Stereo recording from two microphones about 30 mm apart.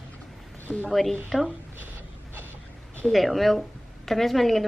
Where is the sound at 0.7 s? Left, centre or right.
Left.